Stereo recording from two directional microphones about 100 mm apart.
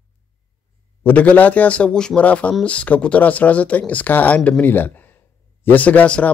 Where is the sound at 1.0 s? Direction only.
15° left (ahead or behind).